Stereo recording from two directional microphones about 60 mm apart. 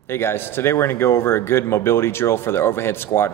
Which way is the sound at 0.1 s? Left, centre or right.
Left.